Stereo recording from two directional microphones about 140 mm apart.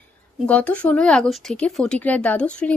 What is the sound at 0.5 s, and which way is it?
Speech, 10° left (ahead or behind).